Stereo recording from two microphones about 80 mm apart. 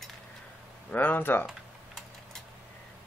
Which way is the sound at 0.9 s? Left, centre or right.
Left.